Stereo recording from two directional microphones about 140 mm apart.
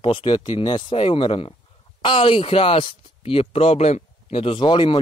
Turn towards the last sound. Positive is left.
turn(degrees=35)  # may be behind; listen again after turning